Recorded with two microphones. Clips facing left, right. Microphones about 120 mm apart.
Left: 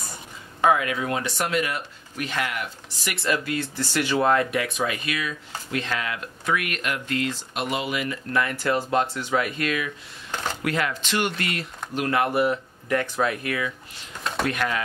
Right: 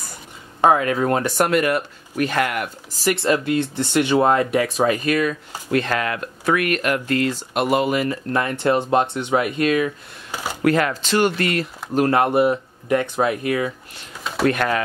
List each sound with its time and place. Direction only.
0.6 s speech: 35° right (ahead or behind); by 3.0 s 50° right (ahead or behind)
3.0 s speech: 30° right (ahead or behind)
10.3 s a sound: 10° right (ahead or behind)
10.6 s speech: 45° right (ahead or behind)
14.5 s speech: 50° right (ahead or behind)